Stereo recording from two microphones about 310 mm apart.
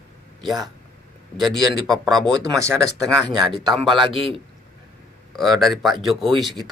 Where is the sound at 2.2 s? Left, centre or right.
Centre.